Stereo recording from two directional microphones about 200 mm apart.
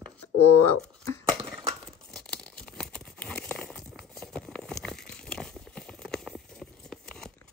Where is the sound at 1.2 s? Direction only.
15° right (ahead or behind).